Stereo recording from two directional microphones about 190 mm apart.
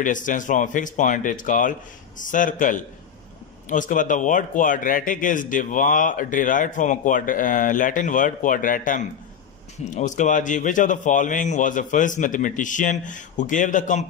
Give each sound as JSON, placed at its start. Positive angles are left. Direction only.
{"t": 0.0, "sound": "a man's voice", "side_deg": 45}